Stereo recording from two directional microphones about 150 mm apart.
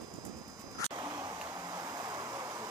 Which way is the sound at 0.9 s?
25° right (ahead or behind).